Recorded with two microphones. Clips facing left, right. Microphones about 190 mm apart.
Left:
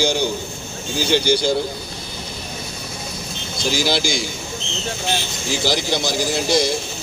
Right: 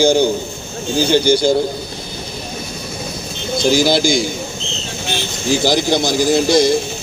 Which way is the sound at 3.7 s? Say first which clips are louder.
Right 6 dB; 50° right (ahead or behind).